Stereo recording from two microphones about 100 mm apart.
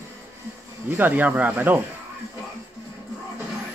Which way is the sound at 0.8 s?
20° right (ahead or behind).